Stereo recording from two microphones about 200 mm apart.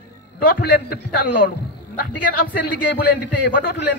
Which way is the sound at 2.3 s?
45° left (ahead or behind).